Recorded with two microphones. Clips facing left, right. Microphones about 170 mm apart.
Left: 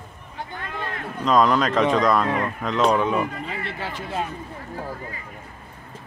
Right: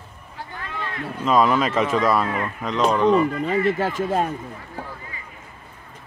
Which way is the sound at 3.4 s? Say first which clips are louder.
Right 11 dB; 45° right (ahead or behind).